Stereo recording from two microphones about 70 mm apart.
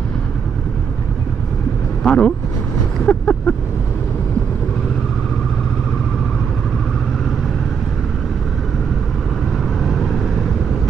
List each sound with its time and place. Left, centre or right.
2.0 s speech: centre
3.1 s vehicle: centre